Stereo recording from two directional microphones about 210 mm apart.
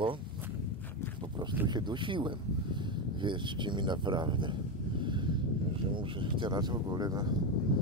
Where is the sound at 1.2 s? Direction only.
20° right (ahead or behind).